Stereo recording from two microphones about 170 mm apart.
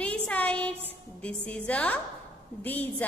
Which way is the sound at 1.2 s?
10° left (ahead or behind).